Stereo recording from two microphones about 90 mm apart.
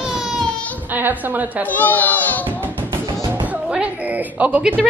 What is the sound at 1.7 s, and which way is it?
Baby cry, 20° left (ahead or behind).